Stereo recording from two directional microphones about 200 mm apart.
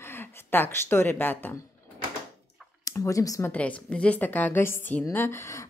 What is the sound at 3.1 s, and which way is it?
A woman's voice, 15° left (ahead or behind).